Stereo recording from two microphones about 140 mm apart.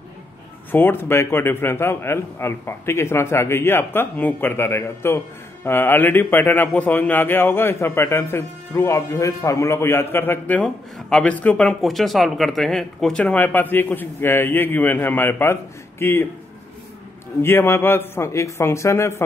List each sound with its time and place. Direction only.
0.7 s a man's voice: 15° left (ahead or behind)
17.4 s a man's voice: 15° left (ahead or behind)